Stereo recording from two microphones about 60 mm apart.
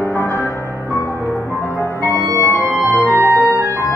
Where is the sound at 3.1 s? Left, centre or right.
Right.